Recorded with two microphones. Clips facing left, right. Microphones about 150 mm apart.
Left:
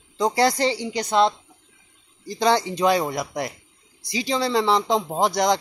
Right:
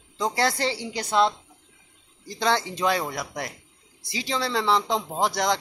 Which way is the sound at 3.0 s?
20° left (ahead or behind).